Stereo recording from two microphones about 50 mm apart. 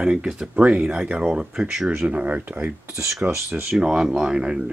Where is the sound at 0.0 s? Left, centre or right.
Centre.